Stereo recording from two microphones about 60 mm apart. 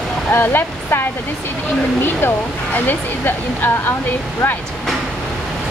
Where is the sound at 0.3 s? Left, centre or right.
Left.